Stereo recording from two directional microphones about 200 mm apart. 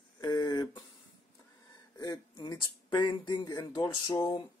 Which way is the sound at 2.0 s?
20° left (ahead or behind).